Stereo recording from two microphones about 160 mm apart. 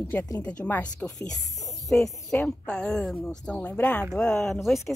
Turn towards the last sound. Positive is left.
turn(degrees=0)  # may be behind; listen again after turning